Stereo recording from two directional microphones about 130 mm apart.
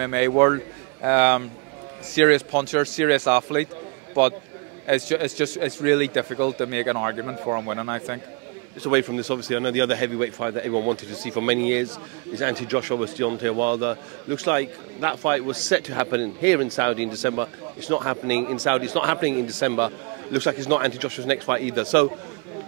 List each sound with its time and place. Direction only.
0.0 s a man's voice: 20° right (ahead or behind)
4.8 s a man's voice: 20° right (ahead or behind)